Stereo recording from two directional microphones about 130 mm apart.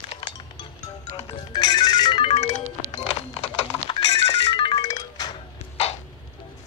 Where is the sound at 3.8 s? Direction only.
40° left (ahead or behind).